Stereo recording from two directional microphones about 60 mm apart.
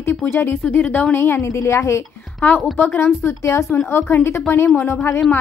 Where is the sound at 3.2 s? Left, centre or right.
Left.